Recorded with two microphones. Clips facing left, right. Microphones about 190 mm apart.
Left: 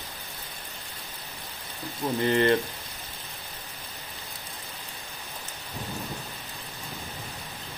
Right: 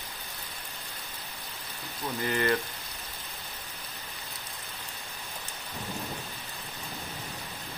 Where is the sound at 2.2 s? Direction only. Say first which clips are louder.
Left 6 dB; 25° left (ahead or behind).